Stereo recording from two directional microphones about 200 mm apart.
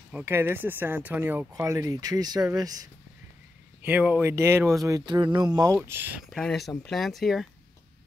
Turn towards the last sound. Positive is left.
turn(degrees=0)  # may be behind; listen again after turning